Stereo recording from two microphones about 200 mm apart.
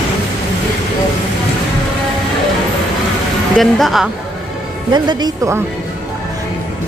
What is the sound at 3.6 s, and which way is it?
Speech, centre (ahead or behind).